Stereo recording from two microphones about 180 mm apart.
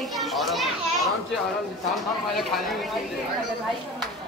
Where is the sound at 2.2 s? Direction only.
Centre (ahead or behind).